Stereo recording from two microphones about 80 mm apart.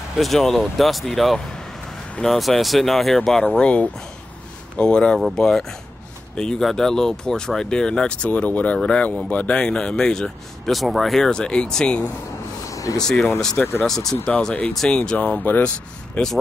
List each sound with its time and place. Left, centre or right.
0.2 s speech: centre
12.6 s a sound: left
13.0 s speech: centre